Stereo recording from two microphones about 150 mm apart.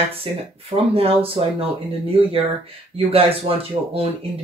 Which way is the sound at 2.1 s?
40° right (ahead or behind).